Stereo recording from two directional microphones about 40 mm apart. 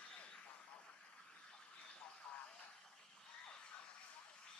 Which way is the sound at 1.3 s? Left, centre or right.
Left.